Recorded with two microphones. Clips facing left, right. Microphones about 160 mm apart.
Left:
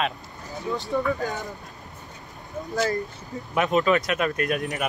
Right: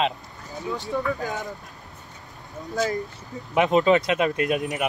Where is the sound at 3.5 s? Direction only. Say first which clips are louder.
Right 3 dB; 25° right (ahead or behind).